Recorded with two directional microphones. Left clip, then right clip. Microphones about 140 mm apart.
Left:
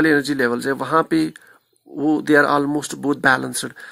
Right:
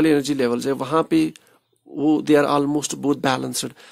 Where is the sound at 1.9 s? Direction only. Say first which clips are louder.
Left 1 dB; 10° left (ahead or behind).